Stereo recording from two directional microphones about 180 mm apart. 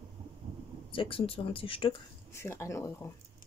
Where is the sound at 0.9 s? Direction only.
30° left (ahead or behind).